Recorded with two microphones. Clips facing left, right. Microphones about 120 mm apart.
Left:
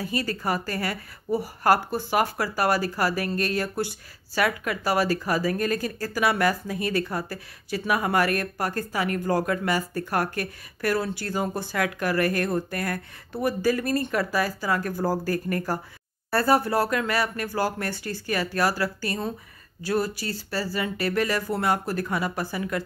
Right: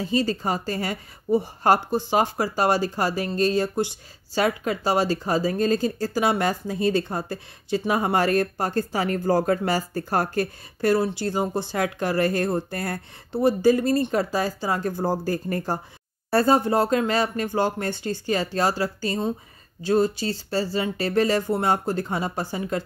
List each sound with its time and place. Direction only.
0.0 s speech: 25° right (ahead or behind)